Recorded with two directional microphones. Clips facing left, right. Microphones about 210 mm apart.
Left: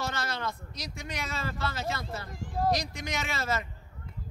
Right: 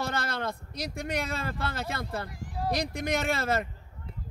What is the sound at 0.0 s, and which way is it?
Speech, 55° right (ahead or behind).